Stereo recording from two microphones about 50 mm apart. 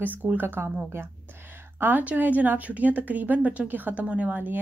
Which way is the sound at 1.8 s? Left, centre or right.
Right.